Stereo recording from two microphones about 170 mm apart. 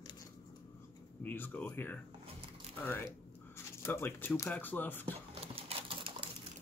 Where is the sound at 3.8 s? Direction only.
15° left (ahead or behind).